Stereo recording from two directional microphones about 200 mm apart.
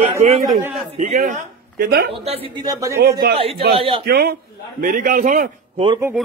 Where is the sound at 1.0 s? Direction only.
40° right (ahead or behind).